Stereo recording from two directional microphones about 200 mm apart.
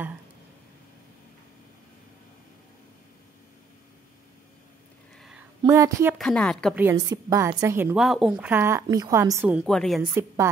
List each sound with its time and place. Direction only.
5.6 s speech: 15° right (ahead or behind)
6.1 s speech: 5° left (ahead or behind)
6.7 s a woman's voice: 10° right (ahead or behind)
10.1 s a woman's voice: 15° right (ahead or behind)